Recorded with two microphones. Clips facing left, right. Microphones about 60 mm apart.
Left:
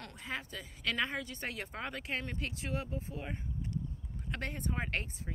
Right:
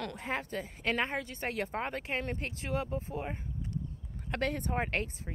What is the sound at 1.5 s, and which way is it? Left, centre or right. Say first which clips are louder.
Speech: right 8 dB; right.